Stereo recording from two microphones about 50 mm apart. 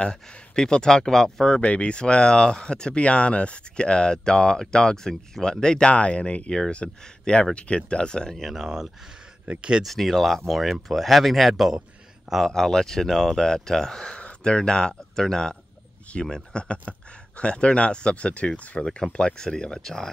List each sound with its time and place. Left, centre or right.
0.0 s speech: centre
1.6 s speech: left
6.5 s speech: centre
8.4 s speech: centre
9.5 s speech: centre
9.8 s speech: centre
12.4 s speech: centre